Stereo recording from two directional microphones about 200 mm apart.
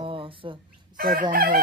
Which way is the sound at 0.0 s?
25° right (ahead or behind).